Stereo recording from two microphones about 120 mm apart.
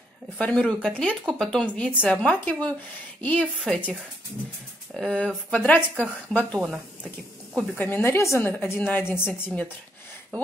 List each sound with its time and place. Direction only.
0.4 s a woman's voice: 10° left (ahead or behind)
3.5 s a woman's voice: centre (ahead or behind)
4.9 s speech: 5° left (ahead or behind)
7.7 s speech: 15° left (ahead or behind)